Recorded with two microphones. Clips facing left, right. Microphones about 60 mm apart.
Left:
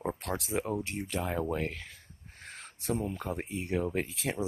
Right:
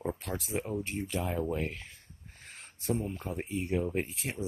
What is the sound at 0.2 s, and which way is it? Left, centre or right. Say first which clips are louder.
Speech: left 2 dB; left.